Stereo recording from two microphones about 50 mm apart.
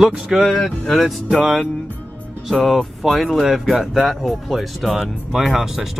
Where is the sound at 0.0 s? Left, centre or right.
Centre.